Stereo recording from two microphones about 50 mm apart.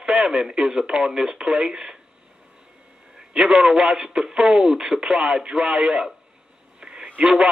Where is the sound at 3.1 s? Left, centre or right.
Centre.